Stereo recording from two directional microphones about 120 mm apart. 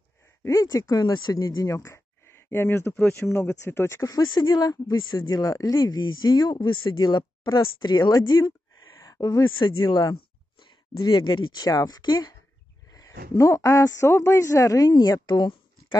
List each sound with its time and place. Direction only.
0.4 s speech: 25° left (ahead or behind)
3.0 s speech: 10° left (ahead or behind)
3.4 s a man's voice: 20° left (ahead or behind); by 16.0 s 35° left (ahead or behind)